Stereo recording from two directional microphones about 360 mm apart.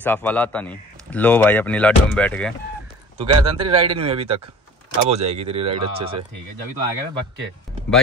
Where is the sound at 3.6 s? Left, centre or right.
Centre.